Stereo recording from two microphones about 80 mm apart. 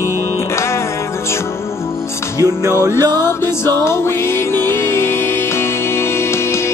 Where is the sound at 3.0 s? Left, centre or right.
Left.